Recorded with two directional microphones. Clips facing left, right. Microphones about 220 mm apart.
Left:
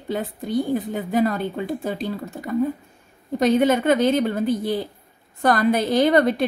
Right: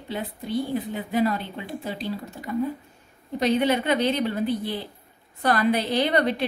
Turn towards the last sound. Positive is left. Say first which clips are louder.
# left 5 dB
turn(degrees=45)  # may be behind; listen again after turning